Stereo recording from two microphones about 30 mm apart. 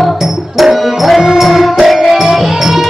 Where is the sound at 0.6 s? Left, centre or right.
Centre.